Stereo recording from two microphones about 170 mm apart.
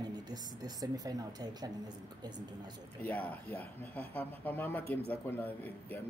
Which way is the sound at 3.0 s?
10° left (ahead or behind).